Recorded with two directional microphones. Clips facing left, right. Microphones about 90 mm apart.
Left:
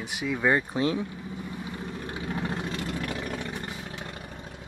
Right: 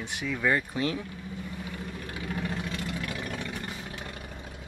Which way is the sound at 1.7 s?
25° left (ahead or behind).